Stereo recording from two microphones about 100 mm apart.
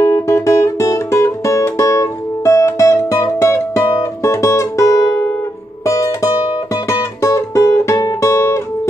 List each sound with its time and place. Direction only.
0.0 s music: 30° left (ahead or behind)